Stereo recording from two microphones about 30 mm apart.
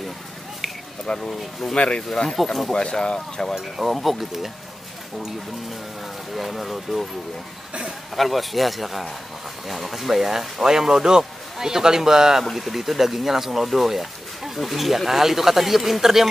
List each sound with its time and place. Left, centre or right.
1.1 s speech: left
1.8 s speech: left
2.4 s a man's voice: centre
2.7 s speech: left
3.8 s a man's voice: centre
6.3 s a man's voice: centre
8.2 s a man's voice: centre